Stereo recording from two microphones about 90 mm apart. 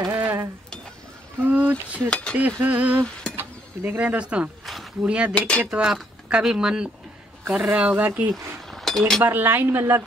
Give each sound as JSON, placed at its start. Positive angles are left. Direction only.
{"t": 0.1, "sound": "stir", "side_deg": -25}
{"t": 1.4, "sound": "a sound", "side_deg": -20}
{"t": 2.0, "sound": "cutlery", "side_deg": 15}
{"t": 2.6, "sound": "a woman's voice", "side_deg": -20}
{"t": 8.3, "sound": "chink", "side_deg": 0}
{"t": 9.2, "sound": "a woman's voice", "side_deg": -20}